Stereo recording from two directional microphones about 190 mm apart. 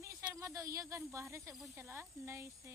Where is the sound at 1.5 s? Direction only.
Centre (ahead or behind).